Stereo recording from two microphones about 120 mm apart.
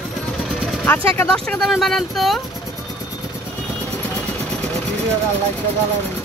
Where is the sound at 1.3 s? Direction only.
5° left (ahead or behind).